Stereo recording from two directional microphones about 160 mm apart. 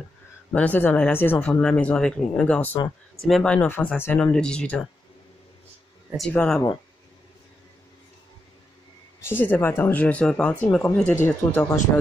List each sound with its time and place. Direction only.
0.5 s speech: 10° left (ahead or behind)
6.1 s speech: 5° left (ahead or behind)
9.2 s speech: 15° left (ahead or behind)